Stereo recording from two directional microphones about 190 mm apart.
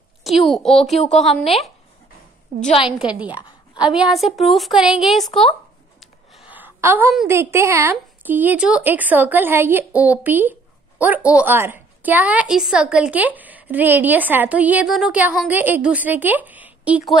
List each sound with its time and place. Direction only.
0.2 s a woman's voice: centre (ahead or behind)
1.1 s a woman's voice: 30° left (ahead or behind)
2.8 s a woman's voice: 5° right (ahead or behind)
6.5 s a sound: 10° right (ahead or behind)
7.2 s a woman's voice: 15° right (ahead or behind)